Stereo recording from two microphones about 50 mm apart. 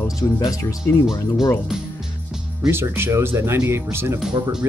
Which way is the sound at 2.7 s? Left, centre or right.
Right.